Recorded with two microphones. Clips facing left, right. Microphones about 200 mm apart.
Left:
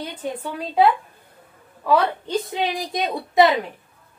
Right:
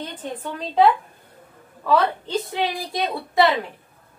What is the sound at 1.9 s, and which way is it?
A woman's voice, 15° left (ahead or behind).